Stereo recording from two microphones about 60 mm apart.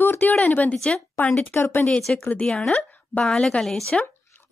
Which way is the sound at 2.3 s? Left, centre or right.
Left.